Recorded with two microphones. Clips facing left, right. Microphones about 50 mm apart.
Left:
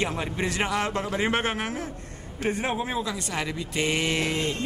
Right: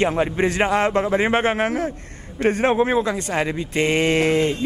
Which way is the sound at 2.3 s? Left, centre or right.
Right.